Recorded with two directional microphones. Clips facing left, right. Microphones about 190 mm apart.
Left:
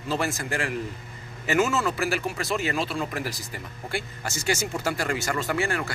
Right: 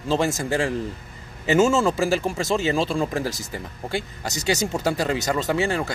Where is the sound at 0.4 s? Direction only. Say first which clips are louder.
Right 5 dB; 25° right (ahead or behind).